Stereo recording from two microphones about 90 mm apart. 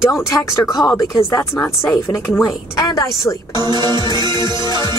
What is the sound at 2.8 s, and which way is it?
Speech, 40° left (ahead or behind).